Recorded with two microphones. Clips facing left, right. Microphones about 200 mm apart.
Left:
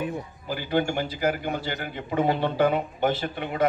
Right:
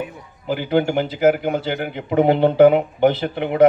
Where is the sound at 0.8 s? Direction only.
65° right (ahead or behind).